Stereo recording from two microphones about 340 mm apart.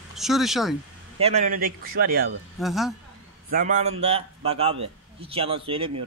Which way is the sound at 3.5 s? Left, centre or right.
Right.